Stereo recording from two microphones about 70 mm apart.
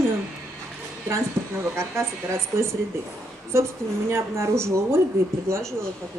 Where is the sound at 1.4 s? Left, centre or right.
Right.